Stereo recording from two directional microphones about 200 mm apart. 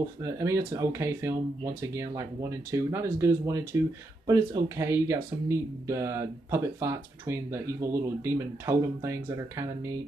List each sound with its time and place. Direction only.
0.2 s speech: 15° right (ahead or behind)